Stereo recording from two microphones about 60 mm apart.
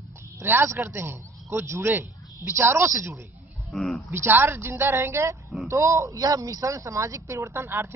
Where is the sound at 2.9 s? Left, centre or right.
Right.